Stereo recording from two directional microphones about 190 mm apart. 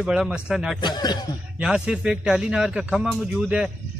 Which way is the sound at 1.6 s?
5° right (ahead or behind).